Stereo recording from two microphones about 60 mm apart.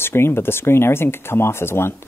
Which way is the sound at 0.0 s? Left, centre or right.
Left.